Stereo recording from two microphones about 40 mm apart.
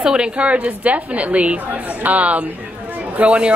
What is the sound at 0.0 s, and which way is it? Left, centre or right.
Speech, centre.